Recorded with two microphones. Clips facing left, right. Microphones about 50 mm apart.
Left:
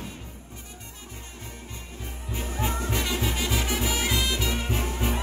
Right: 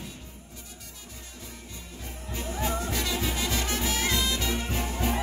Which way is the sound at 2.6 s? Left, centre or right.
Centre.